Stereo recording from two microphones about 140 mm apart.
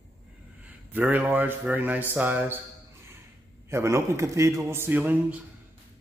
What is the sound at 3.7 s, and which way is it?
A man's voice, 20° right (ahead or behind).